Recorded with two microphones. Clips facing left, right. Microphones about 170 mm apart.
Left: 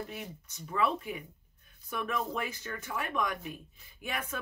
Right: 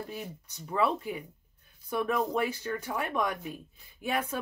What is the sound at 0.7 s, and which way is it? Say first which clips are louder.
Speech: right 2 dB; 30° right (ahead or behind).